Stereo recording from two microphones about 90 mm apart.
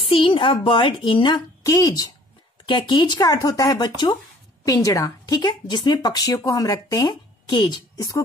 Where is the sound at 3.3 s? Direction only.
40° left (ahead or behind).